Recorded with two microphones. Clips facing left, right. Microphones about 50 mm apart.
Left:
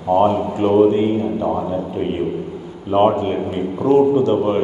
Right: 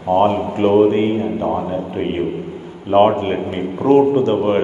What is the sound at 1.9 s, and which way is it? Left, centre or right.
A man's voice, right.